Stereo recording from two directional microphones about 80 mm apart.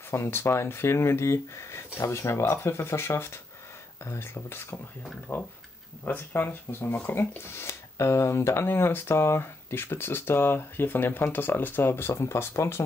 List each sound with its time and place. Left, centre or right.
0.1 s speech: left